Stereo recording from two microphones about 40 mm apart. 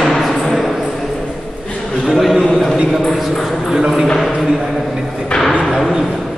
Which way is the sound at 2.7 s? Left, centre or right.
Centre.